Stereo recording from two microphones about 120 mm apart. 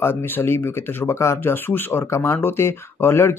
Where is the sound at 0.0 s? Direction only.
20° left (ahead or behind).